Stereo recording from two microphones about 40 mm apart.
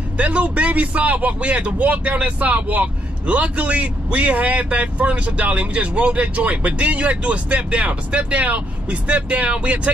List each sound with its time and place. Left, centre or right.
0.2 s a man's voice: right